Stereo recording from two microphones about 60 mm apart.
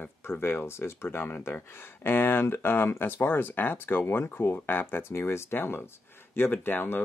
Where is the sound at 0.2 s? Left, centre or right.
Left.